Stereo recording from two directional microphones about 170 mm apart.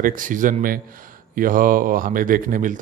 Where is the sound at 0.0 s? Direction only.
50° right (ahead or behind).